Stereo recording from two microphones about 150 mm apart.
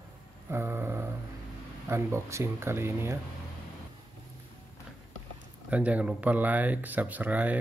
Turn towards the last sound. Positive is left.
turn(degrees=-10)  # may be behind; listen again after turning